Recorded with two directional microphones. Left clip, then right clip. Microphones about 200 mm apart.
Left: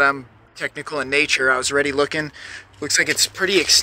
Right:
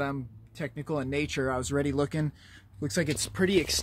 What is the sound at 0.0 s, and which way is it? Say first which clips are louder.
Speech: left 15 dB; 5° right (ahead or behind).